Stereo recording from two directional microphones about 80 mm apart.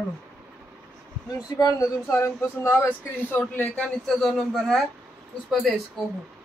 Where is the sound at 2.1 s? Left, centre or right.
Left.